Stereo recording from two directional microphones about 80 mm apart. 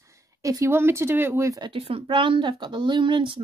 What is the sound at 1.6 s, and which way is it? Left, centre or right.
Speech, right.